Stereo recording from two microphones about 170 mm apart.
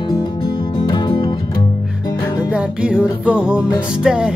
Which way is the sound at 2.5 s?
5° right (ahead or behind).